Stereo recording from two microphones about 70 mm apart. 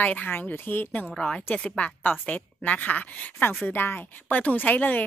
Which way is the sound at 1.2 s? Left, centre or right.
Centre.